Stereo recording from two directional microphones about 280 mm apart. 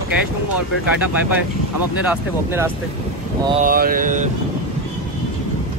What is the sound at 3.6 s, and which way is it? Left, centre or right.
Speech, right.